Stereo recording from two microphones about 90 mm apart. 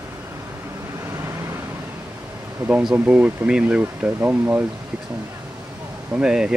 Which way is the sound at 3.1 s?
15° right (ahead or behind).